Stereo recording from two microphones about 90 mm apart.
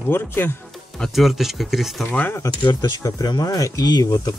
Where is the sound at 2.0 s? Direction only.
20° left (ahead or behind).